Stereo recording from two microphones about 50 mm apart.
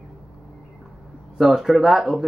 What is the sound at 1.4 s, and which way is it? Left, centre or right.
Speech, centre.